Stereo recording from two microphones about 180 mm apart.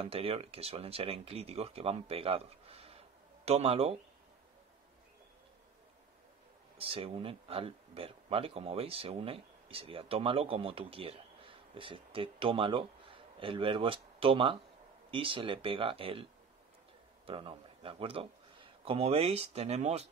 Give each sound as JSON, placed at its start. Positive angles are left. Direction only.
{"t": 0.0, "sound": "speech", "side_deg": -35}
{"t": 6.8, "sound": "speech", "side_deg": -35}
{"t": 17.3, "sound": "speech", "side_deg": -30}